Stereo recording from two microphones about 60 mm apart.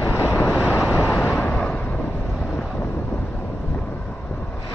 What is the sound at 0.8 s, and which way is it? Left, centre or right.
Vehicle, right.